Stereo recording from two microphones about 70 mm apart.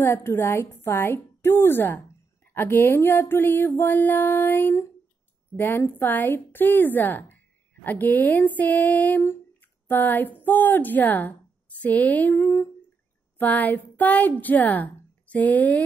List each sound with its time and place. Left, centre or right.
0.0 s a woman's voice: left
9.2 s speech: left
13.4 s a woman's voice: left